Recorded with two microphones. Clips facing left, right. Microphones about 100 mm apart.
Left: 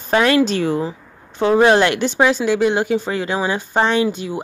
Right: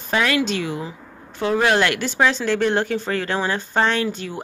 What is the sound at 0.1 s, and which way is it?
Speech, 35° left (ahead or behind).